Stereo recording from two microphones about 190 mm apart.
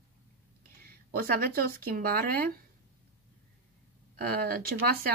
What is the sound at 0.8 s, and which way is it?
Speech, 55° right (ahead or behind).